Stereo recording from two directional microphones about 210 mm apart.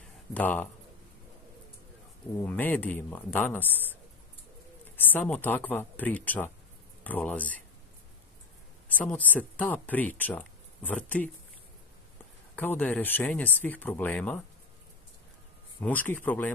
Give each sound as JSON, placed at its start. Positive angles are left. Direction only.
{"t": 0.3, "sound": "speech", "side_deg": 10}
{"t": 2.4, "sound": "speech", "side_deg": 10}
{"t": 8.8, "sound": "speech", "side_deg": 5}
{"t": 12.5, "sound": "speech", "side_deg": 10}
{"t": 15.8, "sound": "speech", "side_deg": 5}